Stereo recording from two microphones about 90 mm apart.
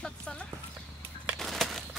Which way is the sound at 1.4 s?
5° left (ahead or behind).